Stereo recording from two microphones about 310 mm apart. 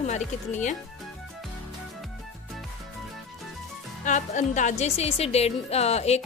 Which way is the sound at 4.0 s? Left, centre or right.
Left.